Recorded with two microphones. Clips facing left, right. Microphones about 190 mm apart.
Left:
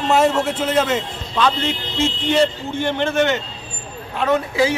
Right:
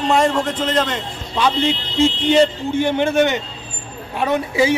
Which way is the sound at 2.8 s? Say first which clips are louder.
Right 3 dB; 10° right (ahead or behind).